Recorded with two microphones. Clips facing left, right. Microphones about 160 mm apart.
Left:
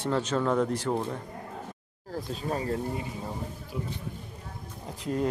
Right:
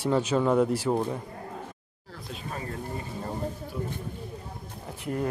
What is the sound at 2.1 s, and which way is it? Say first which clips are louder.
Speech: left 6 dB; 35° left (ahead or behind).